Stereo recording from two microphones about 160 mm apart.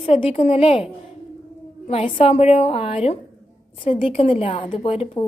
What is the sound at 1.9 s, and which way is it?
A woman's voice, 40° left (ahead or behind).